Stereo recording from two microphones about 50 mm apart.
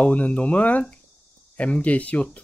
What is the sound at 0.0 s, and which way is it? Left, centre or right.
Speech, left.